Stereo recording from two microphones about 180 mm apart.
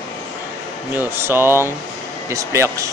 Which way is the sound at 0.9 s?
10° right (ahead or behind).